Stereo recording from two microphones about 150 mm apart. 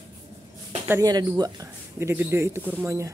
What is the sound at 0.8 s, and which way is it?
Speech, 20° right (ahead or behind).